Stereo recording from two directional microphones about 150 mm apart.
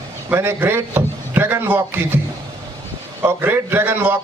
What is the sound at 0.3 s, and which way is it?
A man's voice, 15° right (ahead or behind).